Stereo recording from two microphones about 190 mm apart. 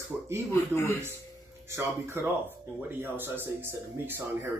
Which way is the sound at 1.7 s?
15° right (ahead or behind).